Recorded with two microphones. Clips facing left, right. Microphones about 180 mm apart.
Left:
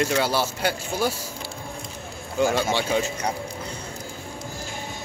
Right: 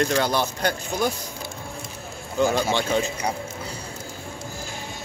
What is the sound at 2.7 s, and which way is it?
Speech, 10° left (ahead or behind).